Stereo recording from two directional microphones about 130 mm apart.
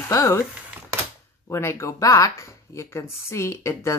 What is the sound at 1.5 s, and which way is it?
Speech, 20° left (ahead or behind).